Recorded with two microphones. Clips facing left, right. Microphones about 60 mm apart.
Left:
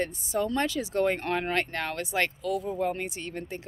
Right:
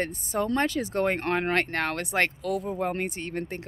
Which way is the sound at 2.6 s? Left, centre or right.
Right.